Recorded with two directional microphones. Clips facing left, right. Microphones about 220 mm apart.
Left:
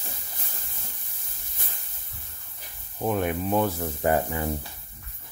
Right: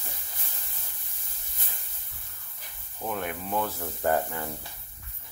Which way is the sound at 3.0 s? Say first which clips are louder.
Left 7 dB; 25° left (ahead or behind).